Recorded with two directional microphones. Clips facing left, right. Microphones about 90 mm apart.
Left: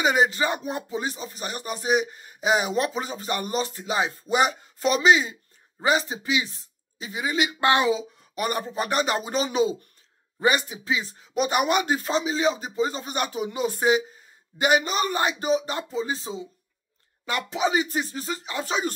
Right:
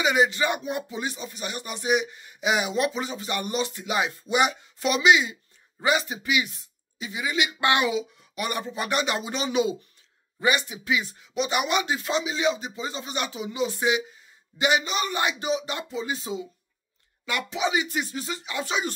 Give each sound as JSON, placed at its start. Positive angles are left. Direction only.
{"t": 0.0, "sound": "speech", "side_deg": 40}